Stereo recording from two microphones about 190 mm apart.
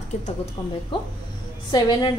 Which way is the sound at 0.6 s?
20° left (ahead or behind).